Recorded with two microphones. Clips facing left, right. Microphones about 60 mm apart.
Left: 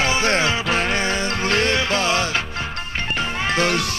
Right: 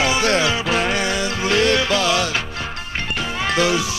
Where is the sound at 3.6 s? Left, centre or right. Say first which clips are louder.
Right 2 dB; left.